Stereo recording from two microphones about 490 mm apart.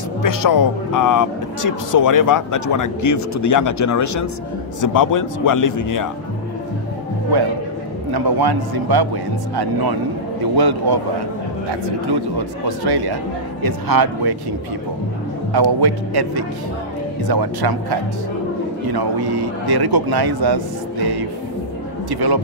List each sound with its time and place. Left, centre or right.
0.2 s speech: left
8.1 s speech: right
15.5 s speech: right